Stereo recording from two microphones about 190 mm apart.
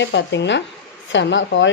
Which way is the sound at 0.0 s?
65° left (ahead or behind).